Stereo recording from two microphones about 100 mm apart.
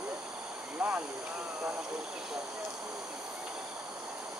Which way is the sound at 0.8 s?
15° right (ahead or behind).